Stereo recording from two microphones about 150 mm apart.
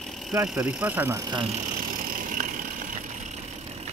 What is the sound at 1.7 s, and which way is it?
Vehicle, 65° right (ahead or behind).